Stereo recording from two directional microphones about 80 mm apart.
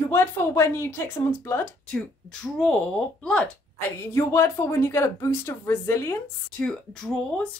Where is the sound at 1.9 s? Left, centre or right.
Centre.